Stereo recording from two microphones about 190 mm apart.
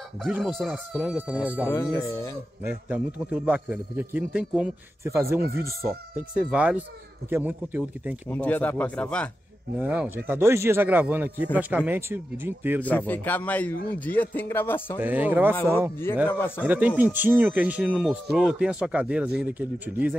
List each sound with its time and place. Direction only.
0.2 s speech: centre (ahead or behind)
1.7 s a man's voice: 15° left (ahead or behind)
2.6 s speech: 10° right (ahead or behind)
8.3 s a man's voice: 10° left (ahead or behind)
9.8 s speech: 10° right (ahead or behind)
12.8 s a man's voice: 10° left (ahead or behind)
15.0 s speech: 10° right (ahead or behind)
16.3 s a man's voice: 10° left (ahead or behind)
16.6 s speech: 10° right (ahead or behind)